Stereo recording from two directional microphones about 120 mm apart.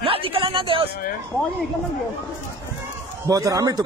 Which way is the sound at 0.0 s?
50° right (ahead or behind).